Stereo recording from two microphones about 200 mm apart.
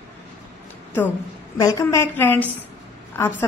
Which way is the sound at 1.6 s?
15° left (ahead or behind).